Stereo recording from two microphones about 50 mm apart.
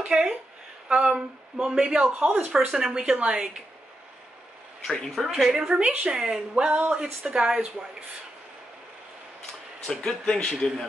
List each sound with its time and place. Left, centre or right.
0.1 s a woman's voice: centre
0.8 s speech: right
3.0 s speech: right
4.8 s speech: centre
5.5 s speech: centre
5.8 s speech: right
6.1 s speech: centre
9.8 s speech: centre